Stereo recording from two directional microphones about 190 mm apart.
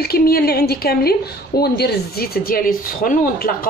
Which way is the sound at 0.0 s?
55° left (ahead or behind).